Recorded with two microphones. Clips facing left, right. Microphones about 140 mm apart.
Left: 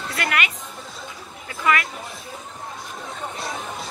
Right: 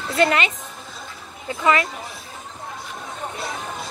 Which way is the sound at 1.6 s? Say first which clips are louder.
Right 3 dB; 25° right (ahead or behind).